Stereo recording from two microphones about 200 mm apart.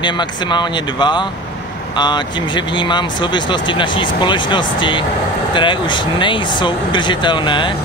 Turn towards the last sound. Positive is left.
turn(degrees=25)  # may be behind; listen again after turning